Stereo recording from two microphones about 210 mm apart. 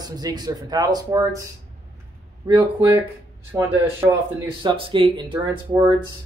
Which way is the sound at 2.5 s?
10° right (ahead or behind).